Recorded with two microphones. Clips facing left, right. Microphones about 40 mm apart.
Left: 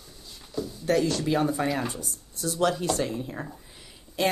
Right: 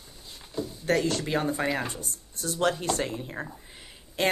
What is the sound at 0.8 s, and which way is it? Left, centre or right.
Speech, right.